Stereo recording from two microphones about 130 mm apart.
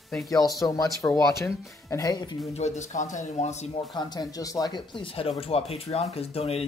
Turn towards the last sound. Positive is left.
turn(degrees=50)  # may be behind; listen again after turning